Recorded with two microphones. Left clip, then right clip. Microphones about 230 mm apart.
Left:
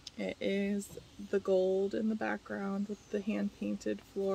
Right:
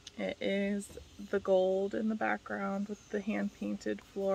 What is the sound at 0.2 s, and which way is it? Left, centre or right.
Speech, centre.